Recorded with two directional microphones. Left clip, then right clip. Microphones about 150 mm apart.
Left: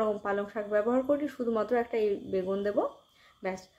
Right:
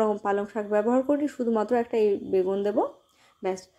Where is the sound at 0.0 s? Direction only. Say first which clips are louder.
Right 5 dB; 30° right (ahead or behind).